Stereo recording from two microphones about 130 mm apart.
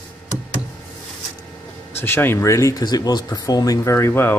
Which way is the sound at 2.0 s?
15° left (ahead or behind).